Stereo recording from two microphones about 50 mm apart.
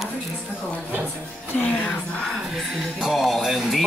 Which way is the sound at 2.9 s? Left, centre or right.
Centre.